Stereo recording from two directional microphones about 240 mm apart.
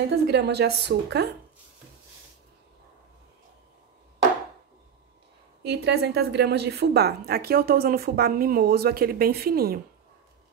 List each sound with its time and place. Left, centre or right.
0.1 s a woman's voice: right
5.6 s a woman's voice: right